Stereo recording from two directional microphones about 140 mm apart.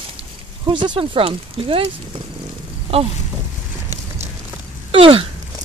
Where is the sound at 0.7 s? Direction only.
35° right (ahead or behind).